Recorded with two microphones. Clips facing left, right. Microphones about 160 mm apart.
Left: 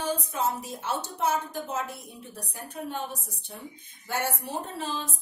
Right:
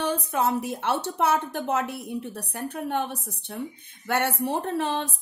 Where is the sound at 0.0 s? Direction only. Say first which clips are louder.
Right 4 dB; 65° right (ahead or behind).